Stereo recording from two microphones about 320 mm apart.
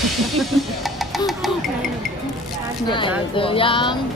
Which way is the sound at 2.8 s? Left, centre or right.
Centre.